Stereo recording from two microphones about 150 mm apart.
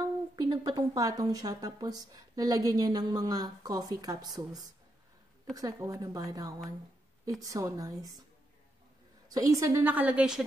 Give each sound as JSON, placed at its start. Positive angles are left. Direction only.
{"t": 0.4, "sound": "speech", "side_deg": -30}
{"t": 9.3, "sound": "a woman's voice", "side_deg": -20}